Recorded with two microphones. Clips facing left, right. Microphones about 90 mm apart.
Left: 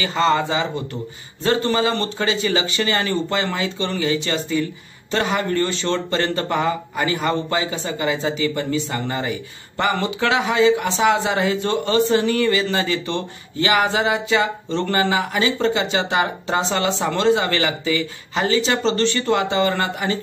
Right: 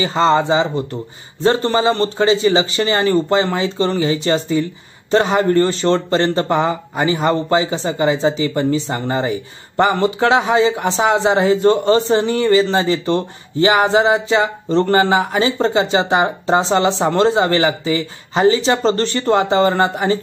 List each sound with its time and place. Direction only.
0.0 s a man's voice: 25° right (ahead or behind)